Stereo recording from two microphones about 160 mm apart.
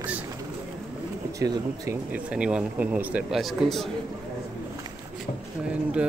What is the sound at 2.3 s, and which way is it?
A man's voice, 5° right (ahead or behind).